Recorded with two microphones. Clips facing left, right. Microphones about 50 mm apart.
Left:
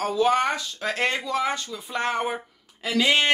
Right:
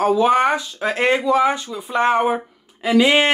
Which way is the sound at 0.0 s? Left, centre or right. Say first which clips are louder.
Right 6 dB; centre.